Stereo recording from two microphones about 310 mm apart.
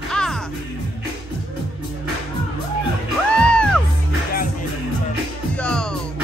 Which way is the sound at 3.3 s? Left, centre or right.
Centre.